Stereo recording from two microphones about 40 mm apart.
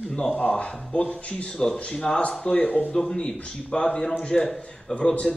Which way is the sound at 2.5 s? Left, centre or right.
Left.